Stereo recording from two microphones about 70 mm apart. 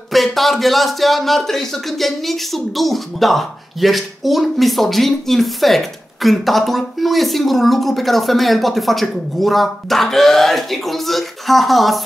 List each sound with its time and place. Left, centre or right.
0.1 s a man's voice: centre